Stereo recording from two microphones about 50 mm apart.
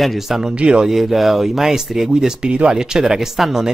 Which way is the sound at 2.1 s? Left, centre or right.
Centre.